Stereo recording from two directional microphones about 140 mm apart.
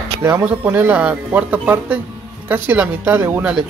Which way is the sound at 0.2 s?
15° right (ahead or behind).